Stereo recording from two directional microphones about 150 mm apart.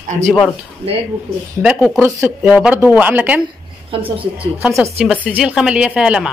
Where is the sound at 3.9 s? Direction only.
35° right (ahead or behind).